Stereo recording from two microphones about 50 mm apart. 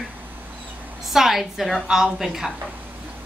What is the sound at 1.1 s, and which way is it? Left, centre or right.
A woman's voice, centre.